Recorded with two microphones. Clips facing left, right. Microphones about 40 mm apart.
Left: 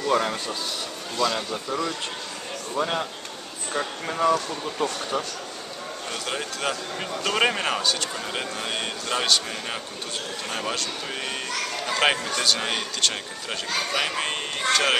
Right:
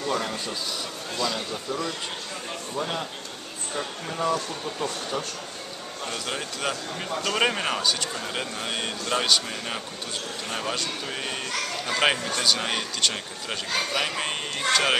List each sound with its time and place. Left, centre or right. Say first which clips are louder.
0.1 s speech: left 6 dB; left
1.1 s speech: left 4 dB; centre
5.1 s a man's voice: left 2 dB; centre